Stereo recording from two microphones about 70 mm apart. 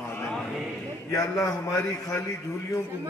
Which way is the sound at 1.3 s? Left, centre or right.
Left.